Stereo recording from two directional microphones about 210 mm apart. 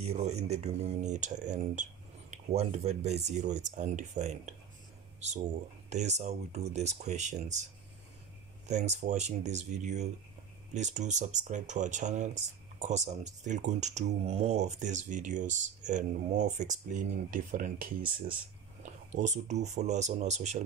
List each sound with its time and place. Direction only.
0.0 s speech: 30° right (ahead or behind)
8.6 s speech: 35° right (ahead or behind)